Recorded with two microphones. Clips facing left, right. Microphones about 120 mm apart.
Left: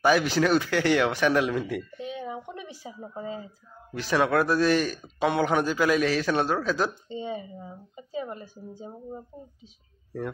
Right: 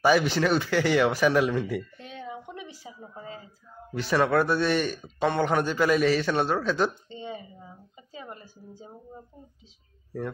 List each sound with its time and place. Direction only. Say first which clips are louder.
0.0 s speech: even; centre (ahead or behind)
2.8 s speech: left 5 dB; 20° left (ahead or behind)
3.9 s speech: even; centre (ahead or behind)
8.1 s speech: left 8 dB; 20° left (ahead or behind)